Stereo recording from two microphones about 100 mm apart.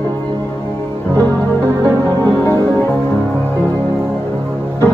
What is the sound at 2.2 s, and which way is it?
Music, 25° left (ahead or behind).